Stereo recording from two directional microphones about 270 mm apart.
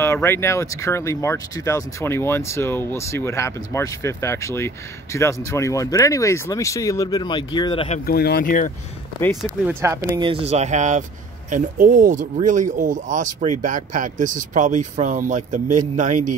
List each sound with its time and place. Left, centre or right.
0.0 s speech: centre
8.1 s speech: left
9.4 s speech: centre; by 16.3 s right